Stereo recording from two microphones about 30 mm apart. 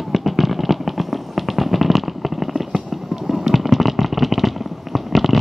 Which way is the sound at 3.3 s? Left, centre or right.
Centre.